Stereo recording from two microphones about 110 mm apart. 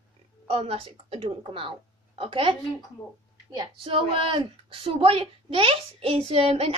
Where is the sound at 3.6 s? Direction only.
50° right (ahead or behind).